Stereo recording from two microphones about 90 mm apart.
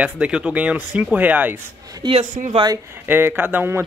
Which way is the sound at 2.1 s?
85° right.